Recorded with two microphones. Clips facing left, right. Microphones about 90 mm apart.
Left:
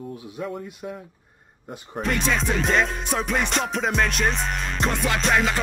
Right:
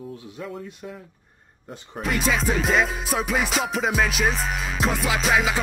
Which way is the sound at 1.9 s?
5° right (ahead or behind).